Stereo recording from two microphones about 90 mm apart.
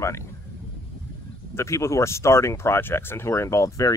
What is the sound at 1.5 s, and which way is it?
Speech, 35° left (ahead or behind).